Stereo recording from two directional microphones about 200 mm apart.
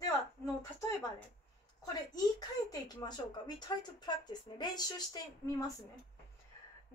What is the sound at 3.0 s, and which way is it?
Speech, 20° left (ahead or behind).